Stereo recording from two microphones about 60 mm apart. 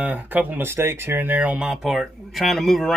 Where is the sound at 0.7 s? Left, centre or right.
Right.